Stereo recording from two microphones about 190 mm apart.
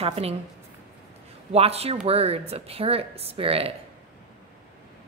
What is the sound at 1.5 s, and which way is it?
Speech, 30° right (ahead or behind).